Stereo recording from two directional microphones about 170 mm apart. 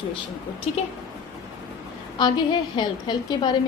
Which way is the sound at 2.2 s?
25° left (ahead or behind).